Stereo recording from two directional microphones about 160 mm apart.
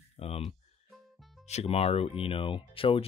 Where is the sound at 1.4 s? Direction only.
40° left (ahead or behind).